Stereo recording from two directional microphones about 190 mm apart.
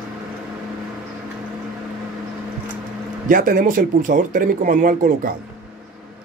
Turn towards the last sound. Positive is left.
turn(degrees=-45)  # may be behind; listen again after turning